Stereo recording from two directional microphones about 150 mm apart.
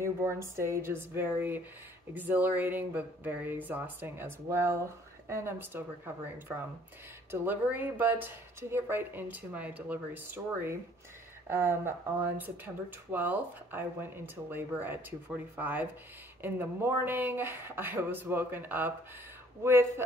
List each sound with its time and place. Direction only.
0.0 s speech: 15° right (ahead or behind)
7.2 s speech: 10° right (ahead or behind)